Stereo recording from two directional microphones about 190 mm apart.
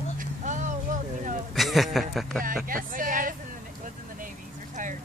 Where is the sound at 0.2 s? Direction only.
40° right (ahead or behind).